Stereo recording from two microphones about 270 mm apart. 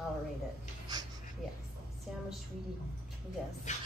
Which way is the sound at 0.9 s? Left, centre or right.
Centre.